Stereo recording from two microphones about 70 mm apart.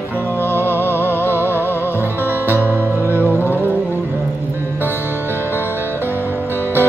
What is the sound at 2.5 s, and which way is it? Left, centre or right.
Music, right.